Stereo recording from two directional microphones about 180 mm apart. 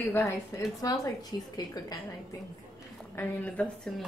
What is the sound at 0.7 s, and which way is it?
Speech, 20° left (ahead or behind).